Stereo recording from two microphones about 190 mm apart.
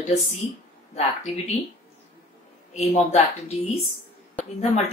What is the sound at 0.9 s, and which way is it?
Speech, 35° left (ahead or behind).